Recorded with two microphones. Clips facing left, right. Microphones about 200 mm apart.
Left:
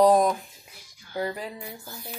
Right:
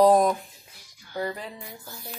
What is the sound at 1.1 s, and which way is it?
Music, 15° left (ahead or behind).